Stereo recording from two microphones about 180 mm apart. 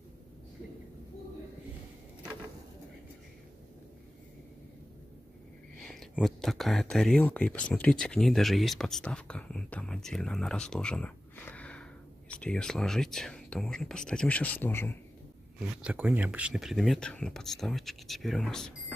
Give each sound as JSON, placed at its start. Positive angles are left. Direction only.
{"t": 5.8, "sound": "a sound", "side_deg": 5}
{"t": 6.1, "sound": "speech", "side_deg": 0}
{"t": 15.8, "sound": "speech", "side_deg": -5}